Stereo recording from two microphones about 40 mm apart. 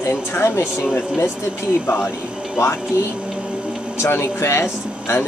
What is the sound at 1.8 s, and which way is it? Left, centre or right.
Speech, left.